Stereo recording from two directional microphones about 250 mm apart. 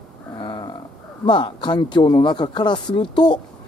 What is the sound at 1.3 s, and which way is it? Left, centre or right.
Speech, centre.